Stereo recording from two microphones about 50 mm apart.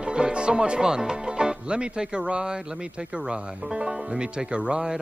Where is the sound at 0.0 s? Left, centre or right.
Centre.